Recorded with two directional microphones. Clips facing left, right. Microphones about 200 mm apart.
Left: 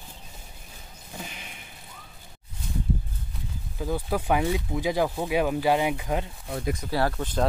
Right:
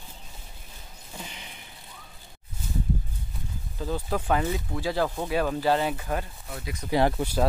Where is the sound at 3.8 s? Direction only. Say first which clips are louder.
Left 1 dB; 10° left (ahead or behind).